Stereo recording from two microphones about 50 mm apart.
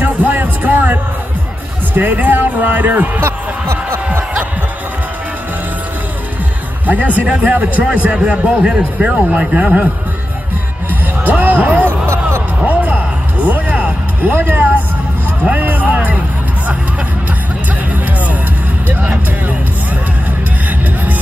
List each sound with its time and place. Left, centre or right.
0.0 s music: right
2.0 s speech: right
6.9 s a man's voice: right
11.2 s music: right
14.4 s speech: right
15.5 s music: right
18.9 s music: right